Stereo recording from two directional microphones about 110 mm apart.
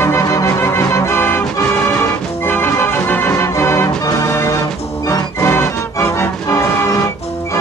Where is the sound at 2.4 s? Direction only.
20° left (ahead or behind).